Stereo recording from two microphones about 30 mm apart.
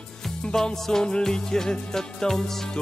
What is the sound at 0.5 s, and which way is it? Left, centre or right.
Music, centre.